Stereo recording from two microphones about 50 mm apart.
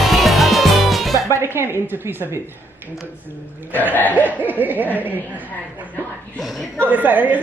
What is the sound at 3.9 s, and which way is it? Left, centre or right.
Hoot, left.